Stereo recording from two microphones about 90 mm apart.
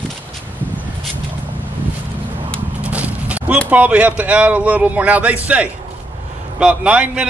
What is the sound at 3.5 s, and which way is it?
A man's voice, 15° right (ahead or behind).